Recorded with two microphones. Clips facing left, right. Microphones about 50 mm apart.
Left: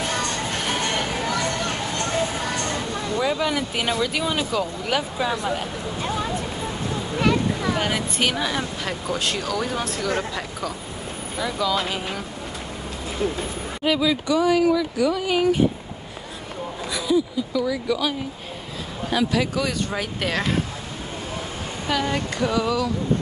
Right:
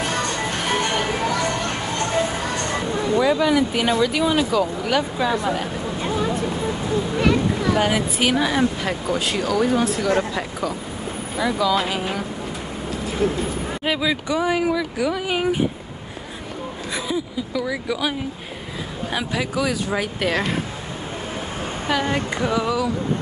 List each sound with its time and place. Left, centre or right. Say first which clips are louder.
3.2 s speech: right 5 dB; centre
5.4 s a sound: right 3 dB; centre
7.2 s speech: even; centre
13.8 s speech: left 2 dB; centre
14.7 s speech: left 1 dB; centre
17.5 s speech: left 1 dB; centre
22.0 s speech: right 1 dB; right